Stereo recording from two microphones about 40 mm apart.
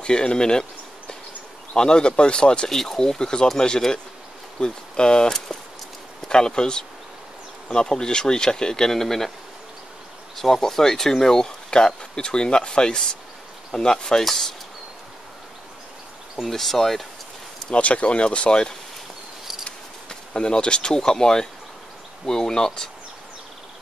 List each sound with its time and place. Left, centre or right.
0.0 s speech: left
1.8 s speech: left
2.7 s speech: centre
10.3 s speech: centre
16.3 s speech: centre
17.6 s speech: left
20.1 s speech: left